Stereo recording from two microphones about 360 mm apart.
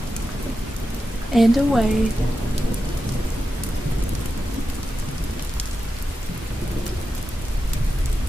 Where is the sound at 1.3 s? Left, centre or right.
Centre.